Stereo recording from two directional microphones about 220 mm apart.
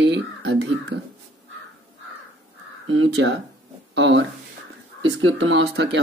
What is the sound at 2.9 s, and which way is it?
Speech, 60° right (ahead or behind).